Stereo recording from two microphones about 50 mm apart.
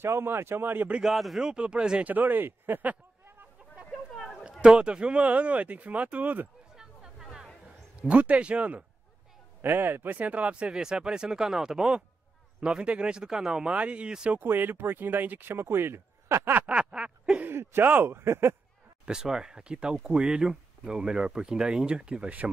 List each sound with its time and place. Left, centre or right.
0.0 s speech: right
1.0 s a man's voice: centre
1.4 s speech: centre
2.0 s speech: right
4.4 s speech: centre; by 6.5 s right
6.7 s a sound: centre
8.0 s speech: right
9.6 s speech: right
10.7 s speech: centre
13.7 s speech: right
14.4 s speech: right
16.6 s speech: centre
17.5 s speech: right
19.0 s speech: centre